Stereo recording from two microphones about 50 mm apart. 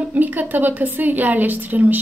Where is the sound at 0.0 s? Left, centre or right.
Right.